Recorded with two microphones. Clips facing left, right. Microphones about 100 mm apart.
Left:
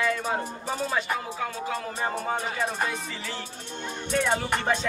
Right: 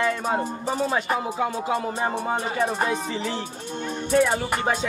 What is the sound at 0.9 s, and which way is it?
Speech, 20° right (ahead or behind).